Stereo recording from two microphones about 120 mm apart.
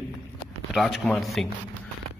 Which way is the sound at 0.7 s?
Centre (ahead or behind).